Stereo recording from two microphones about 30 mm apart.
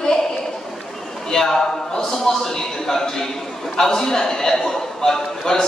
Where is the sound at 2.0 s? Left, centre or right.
Centre.